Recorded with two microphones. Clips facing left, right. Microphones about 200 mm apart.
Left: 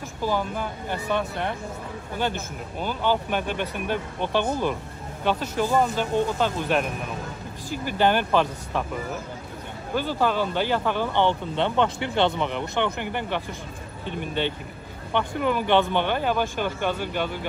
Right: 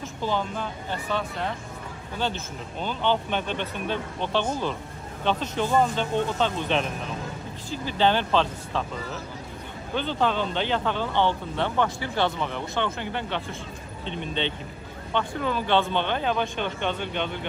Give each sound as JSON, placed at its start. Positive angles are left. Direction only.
{"t": 0.2, "sound": "speech", "side_deg": 10}